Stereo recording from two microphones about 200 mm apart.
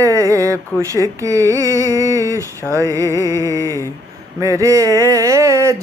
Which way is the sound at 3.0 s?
15° left (ahead or behind).